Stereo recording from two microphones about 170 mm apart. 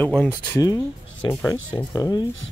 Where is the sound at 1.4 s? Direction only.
10° left (ahead or behind).